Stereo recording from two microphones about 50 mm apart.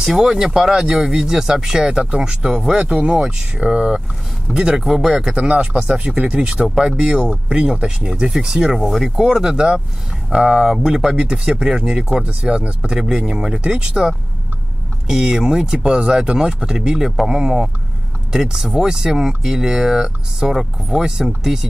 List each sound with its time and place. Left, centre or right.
0.1 s speech: centre
2.8 s speech: right; by 5.3 s centre
5.3 s speech: centre
15.0 s speech: centre